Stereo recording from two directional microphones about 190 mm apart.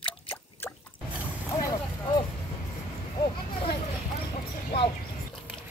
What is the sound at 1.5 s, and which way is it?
Vehicle, 20° left (ahead or behind).